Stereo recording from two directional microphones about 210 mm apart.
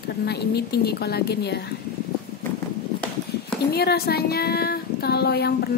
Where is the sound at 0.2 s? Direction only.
50° left (ahead or behind).